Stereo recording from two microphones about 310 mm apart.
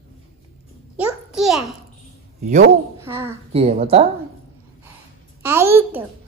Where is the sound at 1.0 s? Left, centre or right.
Centre.